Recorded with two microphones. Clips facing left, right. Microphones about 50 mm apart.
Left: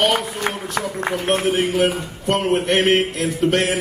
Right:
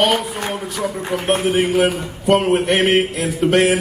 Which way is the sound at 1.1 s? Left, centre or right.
Centre.